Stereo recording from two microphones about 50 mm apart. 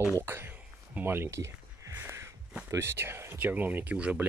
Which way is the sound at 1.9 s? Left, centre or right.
Right.